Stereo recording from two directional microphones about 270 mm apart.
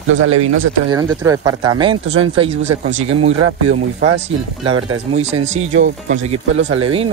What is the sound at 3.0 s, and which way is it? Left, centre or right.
Speech, right.